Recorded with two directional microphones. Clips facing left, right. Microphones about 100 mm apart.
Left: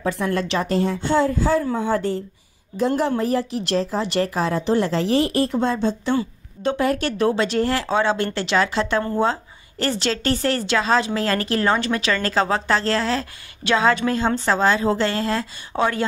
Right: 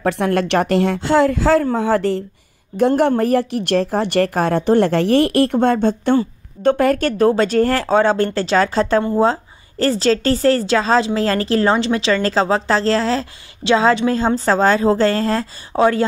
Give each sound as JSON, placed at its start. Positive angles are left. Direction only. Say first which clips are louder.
{"t": 0.0, "sound": "speech", "louder": "right 5 dB", "side_deg": -70}
{"t": 1.8, "sound": "a woman's voice", "louder": "right 5 dB", "side_deg": -80}
{"t": 3.0, "sound": "a woman's voice", "louder": "right 6 dB", "side_deg": -60}